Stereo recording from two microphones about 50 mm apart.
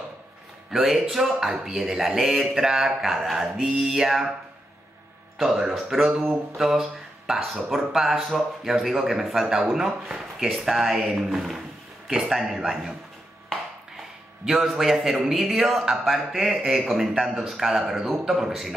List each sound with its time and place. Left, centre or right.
0.7 s speech: centre
5.4 s speech: centre
14.4 s speech: centre